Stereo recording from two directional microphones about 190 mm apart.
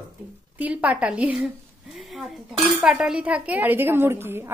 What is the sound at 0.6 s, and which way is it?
Cutlery, 10° right (ahead or behind).